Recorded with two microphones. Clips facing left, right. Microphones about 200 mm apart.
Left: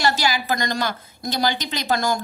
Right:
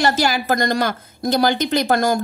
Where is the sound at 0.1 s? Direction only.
50° right (ahead or behind).